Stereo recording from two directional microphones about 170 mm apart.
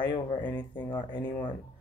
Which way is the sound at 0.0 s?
25° left (ahead or behind).